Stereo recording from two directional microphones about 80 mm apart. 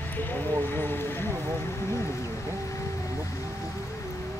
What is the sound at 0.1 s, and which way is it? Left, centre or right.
Speech, left.